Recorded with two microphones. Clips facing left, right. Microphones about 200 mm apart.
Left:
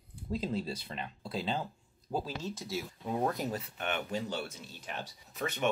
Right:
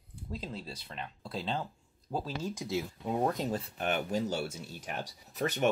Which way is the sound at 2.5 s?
15° right (ahead or behind).